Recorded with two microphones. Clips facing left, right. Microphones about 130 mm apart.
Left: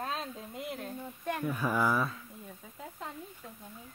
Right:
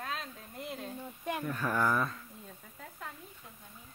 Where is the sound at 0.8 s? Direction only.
10° right (ahead or behind).